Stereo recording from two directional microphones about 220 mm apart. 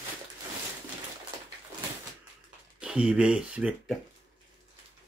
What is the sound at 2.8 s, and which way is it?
Speech, 5° right (ahead or behind).